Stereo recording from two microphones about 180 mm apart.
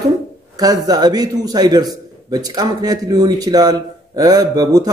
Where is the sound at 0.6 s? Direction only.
20° right (ahead or behind).